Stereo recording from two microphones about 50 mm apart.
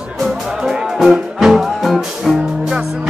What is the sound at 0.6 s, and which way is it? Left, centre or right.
Music, centre.